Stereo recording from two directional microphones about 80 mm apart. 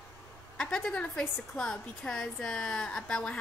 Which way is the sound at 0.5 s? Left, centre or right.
Centre.